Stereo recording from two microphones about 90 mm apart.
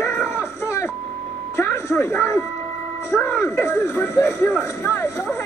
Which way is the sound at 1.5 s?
30° left (ahead or behind).